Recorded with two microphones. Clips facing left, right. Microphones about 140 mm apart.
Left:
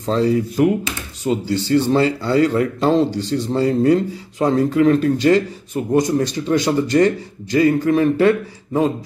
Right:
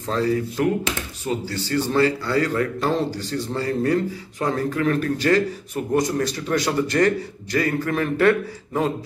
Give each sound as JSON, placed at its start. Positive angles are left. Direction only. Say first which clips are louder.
{"t": 0.0, "sound": "a man's voice", "louder": "left 5 dB", "side_deg": 25}